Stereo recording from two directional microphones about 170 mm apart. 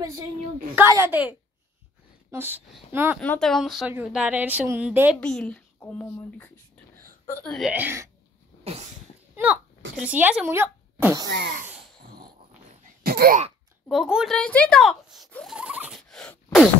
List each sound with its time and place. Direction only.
0.7 s a woman's voice: 15° right (ahead or behind)
2.3 s a woman's voice: 10° right (ahead or behind)
3.2 s a woman's voice: 5° left (ahead or behind)
5.2 s speech: 5° left (ahead or behind)
7.4 s speech: centre (ahead or behind)
7.7 s a woman's voice: 15° right (ahead or behind)
9.3 s speech: 10° right (ahead or behind)
13.0 s a sound: 65° right (ahead or behind)
13.8 s speech: centre (ahead or behind)
16.0 s a sound: 5° left (ahead or behind)